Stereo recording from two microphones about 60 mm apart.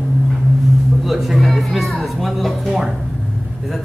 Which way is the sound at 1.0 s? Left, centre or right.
Centre.